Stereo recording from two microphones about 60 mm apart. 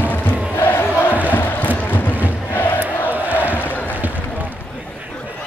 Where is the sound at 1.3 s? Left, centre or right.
Left.